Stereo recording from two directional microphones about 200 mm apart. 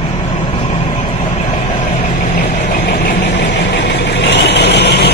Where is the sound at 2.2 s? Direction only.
35° left (ahead or behind).